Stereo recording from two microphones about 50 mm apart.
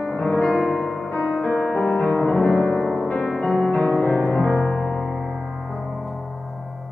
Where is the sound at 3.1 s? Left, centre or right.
Centre.